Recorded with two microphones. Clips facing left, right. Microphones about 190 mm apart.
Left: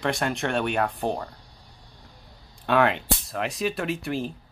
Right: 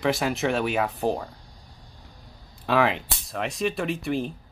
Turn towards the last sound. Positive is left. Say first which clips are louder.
# right 1 dB
turn(degrees=0)  # may be behind; listen again after turning